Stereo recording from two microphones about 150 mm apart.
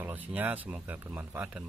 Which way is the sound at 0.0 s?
10° right (ahead or behind).